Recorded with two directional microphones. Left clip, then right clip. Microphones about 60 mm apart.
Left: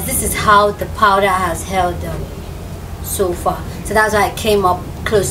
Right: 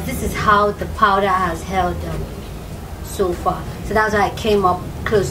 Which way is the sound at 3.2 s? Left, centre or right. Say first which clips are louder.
Left 2 dB; left.